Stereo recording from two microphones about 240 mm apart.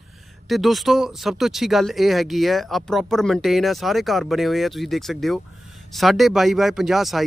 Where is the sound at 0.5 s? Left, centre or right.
Centre.